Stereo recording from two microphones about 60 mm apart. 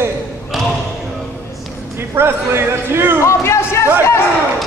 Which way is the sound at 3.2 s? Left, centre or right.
Left.